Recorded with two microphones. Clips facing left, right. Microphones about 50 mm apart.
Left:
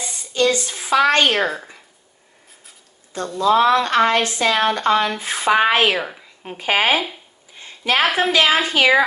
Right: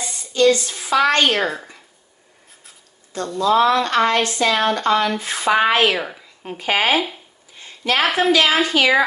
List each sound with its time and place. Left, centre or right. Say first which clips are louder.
0.0 s a woman's voice: right 3 dB; left
1.4 s a woman's voice: left 1 dB; centre
3.3 s speech: left 1 dB; centre
5.9 s a woman's voice: left 1 dB; centre
6.4 s speech: left 1 dB; left
7.6 s a sound: left 1 dB; left
8.0 s a woman's voice: even; centre
8.3 s speech: right 1 dB; left